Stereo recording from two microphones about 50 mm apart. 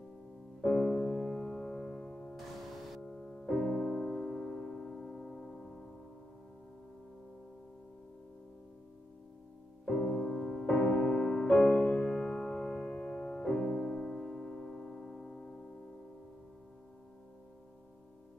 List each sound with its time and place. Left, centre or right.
0.6 s music: centre
9.8 s music: centre
11.3 s music: centre
12.0 s music: centre
13.3 s piano: left